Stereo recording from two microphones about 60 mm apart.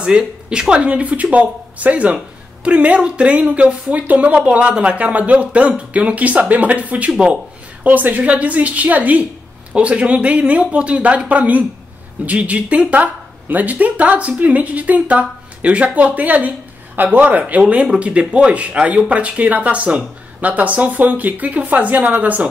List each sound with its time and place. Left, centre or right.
0.0 s speech: centre